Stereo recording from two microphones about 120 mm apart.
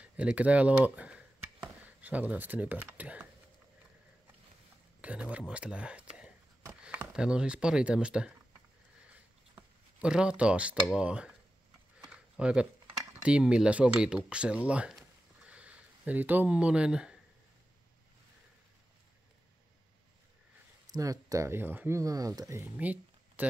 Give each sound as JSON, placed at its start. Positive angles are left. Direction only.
{"t": 0.0, "sound": "speech", "side_deg": -10}
{"t": 5.0, "sound": "speech", "side_deg": -10}
{"t": 9.1, "sound": "cutlery", "side_deg": -10}
{"t": 10.9, "sound": "speech", "side_deg": -10}
{"t": 20.9, "sound": "speech", "side_deg": -30}
{"t": 22.8, "sound": "a sound", "side_deg": -10}